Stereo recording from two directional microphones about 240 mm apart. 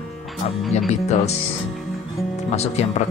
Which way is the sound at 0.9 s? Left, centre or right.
Left.